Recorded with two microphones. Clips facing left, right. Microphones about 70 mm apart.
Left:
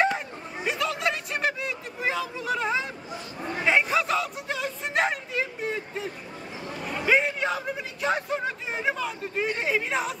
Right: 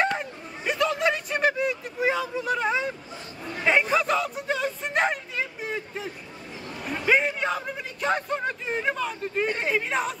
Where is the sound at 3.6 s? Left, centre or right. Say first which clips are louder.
Right 1 dB; centre.